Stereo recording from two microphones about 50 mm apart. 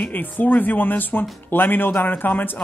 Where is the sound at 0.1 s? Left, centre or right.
Left.